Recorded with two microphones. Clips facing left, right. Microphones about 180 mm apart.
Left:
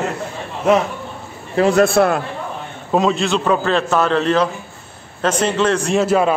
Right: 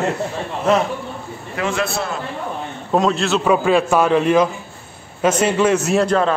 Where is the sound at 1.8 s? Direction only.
55° left (ahead or behind).